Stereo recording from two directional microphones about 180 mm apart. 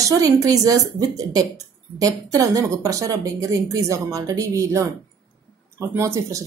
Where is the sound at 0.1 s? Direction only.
20° right (ahead or behind).